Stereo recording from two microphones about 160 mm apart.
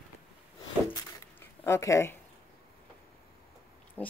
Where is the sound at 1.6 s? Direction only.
15° left (ahead or behind).